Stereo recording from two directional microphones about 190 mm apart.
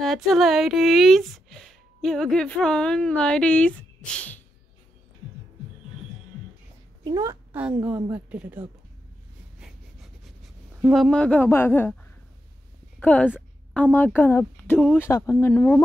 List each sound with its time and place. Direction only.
0.0 s speech: centre (ahead or behind)
7.1 s a woman's voice: 15° right (ahead or behind)
10.8 s a woman's voice: centre (ahead or behind)